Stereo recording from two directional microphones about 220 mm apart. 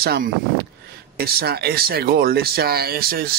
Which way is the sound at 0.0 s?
45° right (ahead or behind).